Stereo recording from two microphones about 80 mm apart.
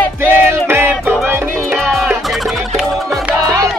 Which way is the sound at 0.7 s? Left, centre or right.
Right.